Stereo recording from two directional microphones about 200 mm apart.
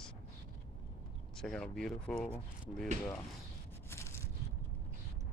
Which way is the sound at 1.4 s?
5° left (ahead or behind).